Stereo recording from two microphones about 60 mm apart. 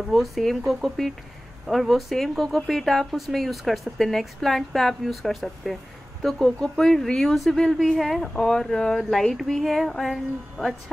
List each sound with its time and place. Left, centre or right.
0.1 s speech: centre